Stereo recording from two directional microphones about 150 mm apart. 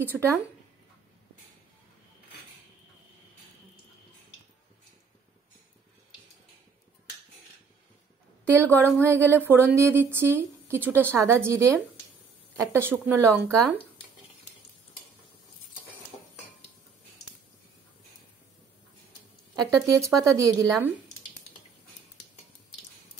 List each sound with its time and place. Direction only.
0.1 s speech: 5° right (ahead or behind)
8.5 s a woman's voice: 10° left (ahead or behind)
9.0 s a woman's voice: 15° right (ahead or behind)
19.5 s speech: 25° right (ahead or behind)